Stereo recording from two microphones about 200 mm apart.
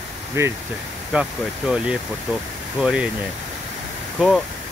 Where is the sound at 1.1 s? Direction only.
5° right (ahead or behind).